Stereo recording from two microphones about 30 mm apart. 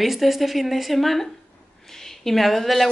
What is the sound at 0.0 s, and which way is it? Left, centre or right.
A woman's voice, centre.